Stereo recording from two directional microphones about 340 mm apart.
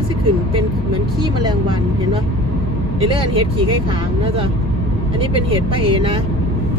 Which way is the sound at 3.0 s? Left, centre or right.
Centre.